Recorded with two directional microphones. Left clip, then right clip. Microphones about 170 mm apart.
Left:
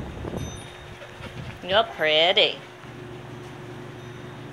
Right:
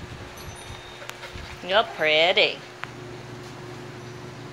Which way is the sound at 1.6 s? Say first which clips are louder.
Even; 5° left (ahead or behind).